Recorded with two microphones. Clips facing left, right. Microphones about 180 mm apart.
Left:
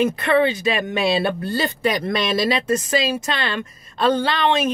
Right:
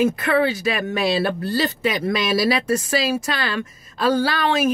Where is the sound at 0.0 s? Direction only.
5° right (ahead or behind).